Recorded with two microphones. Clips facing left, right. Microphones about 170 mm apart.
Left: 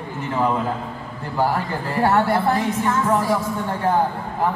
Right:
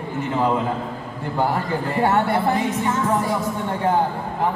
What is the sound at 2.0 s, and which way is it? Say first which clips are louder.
Speech: left 2 dB; 15° right (ahead or behind).